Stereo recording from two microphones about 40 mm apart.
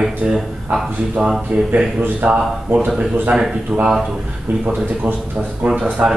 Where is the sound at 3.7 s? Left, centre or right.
Centre.